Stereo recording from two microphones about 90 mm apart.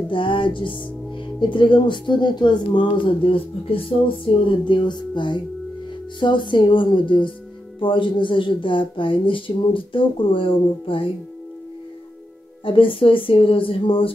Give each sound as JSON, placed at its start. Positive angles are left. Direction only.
{"t": 0.1, "sound": "speech", "side_deg": 70}
{"t": 4.5, "sound": "speech", "side_deg": 60}
{"t": 12.6, "sound": "speech", "side_deg": 80}